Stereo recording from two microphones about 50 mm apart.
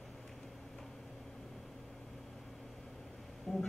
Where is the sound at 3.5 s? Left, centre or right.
Centre.